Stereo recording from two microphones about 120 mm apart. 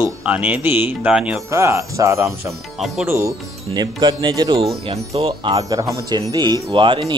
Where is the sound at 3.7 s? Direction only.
35° right (ahead or behind).